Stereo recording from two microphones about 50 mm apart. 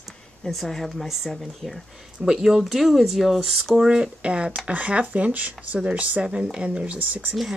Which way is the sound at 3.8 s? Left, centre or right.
Centre.